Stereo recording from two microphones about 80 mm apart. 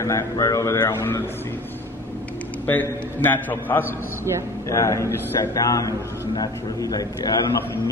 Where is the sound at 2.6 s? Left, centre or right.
Left.